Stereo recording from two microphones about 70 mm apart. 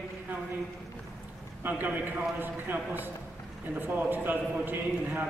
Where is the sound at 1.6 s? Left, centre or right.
Right.